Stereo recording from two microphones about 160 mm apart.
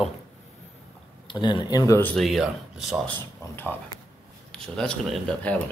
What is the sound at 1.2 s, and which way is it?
Speech, 30° left (ahead or behind).